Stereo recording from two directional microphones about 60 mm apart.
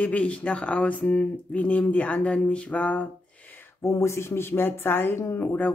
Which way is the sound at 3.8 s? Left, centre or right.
Left.